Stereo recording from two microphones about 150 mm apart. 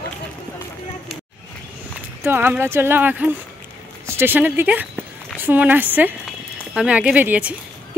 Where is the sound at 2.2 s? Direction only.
15° right (ahead or behind).